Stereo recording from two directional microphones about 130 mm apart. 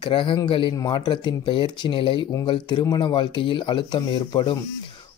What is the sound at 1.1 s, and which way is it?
Speech, 40° left (ahead or behind).